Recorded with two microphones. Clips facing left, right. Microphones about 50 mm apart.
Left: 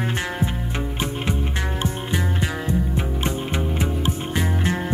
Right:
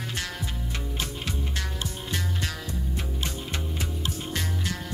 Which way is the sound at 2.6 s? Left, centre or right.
Left.